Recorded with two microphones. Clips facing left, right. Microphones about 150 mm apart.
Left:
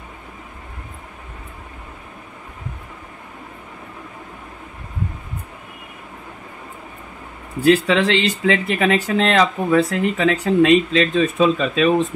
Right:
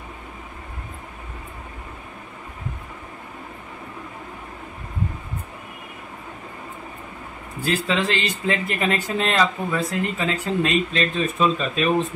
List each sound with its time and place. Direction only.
7.6 s speech: 70° left (ahead or behind); by 11.9 s 90° left